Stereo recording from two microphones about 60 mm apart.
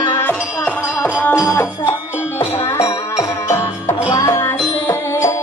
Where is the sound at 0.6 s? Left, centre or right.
Left.